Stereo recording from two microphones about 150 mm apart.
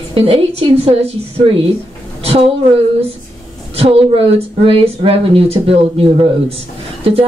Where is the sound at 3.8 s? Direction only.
40° right (ahead or behind).